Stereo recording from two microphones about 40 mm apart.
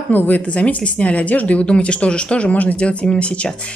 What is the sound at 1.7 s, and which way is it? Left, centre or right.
Speech, left.